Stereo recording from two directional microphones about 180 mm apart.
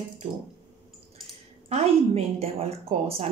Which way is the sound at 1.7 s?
35° right (ahead or behind).